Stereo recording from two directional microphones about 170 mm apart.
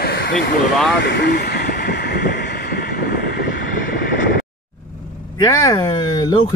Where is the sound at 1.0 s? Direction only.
80° left.